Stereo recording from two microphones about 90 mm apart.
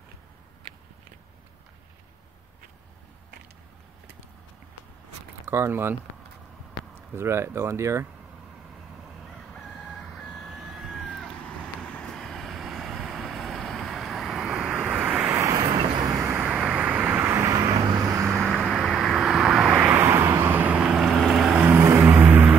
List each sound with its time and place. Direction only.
5.5 s speech: 30° right (ahead or behind)
7.0 s speech: 30° right (ahead or behind)
9.2 s crowing: centre (ahead or behind)
11.4 s vehicle: 15° left (ahead or behind); by 15.2 s 10° right (ahead or behind)
15.3 s vehicle: 35° right (ahead or behind)
16.2 s vehicle: 25° right (ahead or behind)
16.5 s vehicle: 10° right (ahead or behind)
17.3 s vehicle: 35° right (ahead or behind)
18.7 s vehicle: centre (ahead or behind)
19.9 s vehicle: 25° right (ahead or behind); by 21.6 s 10° right (ahead or behind)
21.6 s vehicle: 25° right (ahead or behind)